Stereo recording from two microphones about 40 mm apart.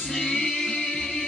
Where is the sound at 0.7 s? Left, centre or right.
Left.